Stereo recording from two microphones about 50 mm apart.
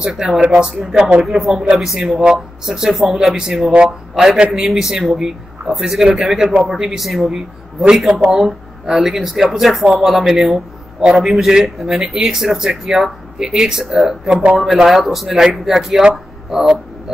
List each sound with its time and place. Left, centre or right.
0.2 s speech: centre
1.6 s speech: centre
1.9 s a man's voice: centre
16.4 s a sound: centre